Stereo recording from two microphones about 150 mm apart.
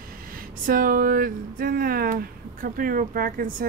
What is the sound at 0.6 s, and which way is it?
Speech, 70° right (ahead or behind).